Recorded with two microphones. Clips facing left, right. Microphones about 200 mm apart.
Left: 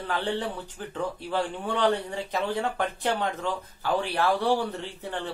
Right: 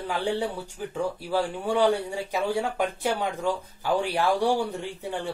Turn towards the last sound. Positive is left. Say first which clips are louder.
# right 2 dB
turn(degrees=-10)  # may be behind; listen again after turning